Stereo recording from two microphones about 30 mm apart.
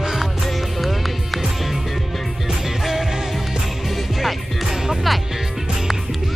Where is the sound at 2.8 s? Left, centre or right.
Centre.